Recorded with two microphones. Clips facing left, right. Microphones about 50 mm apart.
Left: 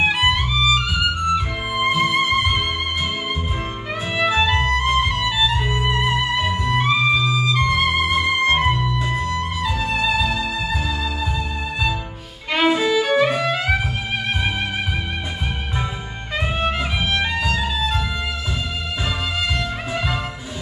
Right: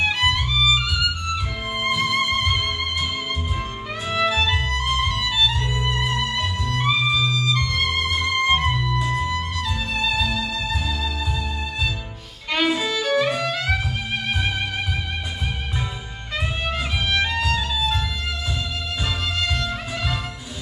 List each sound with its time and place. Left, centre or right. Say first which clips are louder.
0.0 s music: left 3 dB; centre
4.1 s music: left 2 dB; centre
12.5 s violin: left 5 dB; centre
16.3 s music: left 4 dB; centre